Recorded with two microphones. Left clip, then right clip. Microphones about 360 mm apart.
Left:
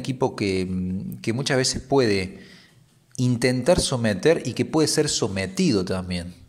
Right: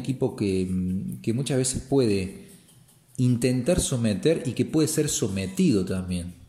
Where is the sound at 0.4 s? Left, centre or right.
Centre.